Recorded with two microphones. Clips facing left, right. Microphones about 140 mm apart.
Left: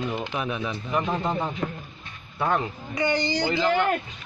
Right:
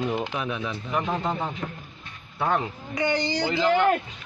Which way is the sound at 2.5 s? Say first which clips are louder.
Even; 10° right (ahead or behind).